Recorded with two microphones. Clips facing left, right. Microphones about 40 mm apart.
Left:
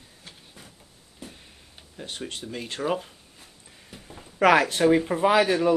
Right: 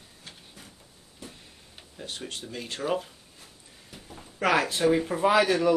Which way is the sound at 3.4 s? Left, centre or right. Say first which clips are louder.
Left 1 dB; left.